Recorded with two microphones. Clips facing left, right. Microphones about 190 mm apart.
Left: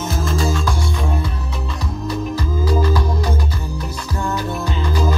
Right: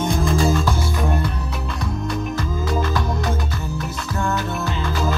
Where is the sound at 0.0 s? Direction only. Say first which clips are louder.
Right 2 dB; 5° left (ahead or behind).